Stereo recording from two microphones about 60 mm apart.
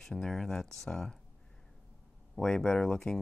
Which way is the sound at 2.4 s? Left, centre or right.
Centre.